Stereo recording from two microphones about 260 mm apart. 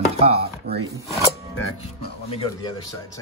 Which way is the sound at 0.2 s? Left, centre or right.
Right.